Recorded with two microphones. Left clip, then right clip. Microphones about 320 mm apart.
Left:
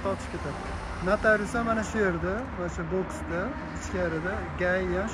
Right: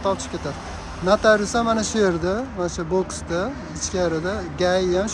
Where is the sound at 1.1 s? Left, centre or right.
Centre.